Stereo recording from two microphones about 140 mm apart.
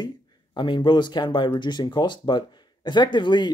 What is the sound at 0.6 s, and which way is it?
Speech, 35° left (ahead or behind).